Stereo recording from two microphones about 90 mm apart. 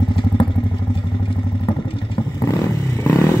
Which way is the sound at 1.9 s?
70° left (ahead or behind).